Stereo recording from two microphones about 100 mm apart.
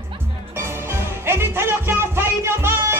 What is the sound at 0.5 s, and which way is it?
Music, 25° right (ahead or behind).